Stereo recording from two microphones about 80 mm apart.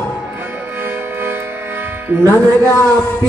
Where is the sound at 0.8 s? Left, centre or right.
Right.